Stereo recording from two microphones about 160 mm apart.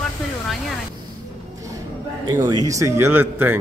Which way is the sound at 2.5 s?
25° right (ahead or behind).